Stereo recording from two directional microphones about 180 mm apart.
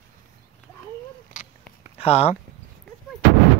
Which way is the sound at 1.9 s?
35° left (ahead or behind).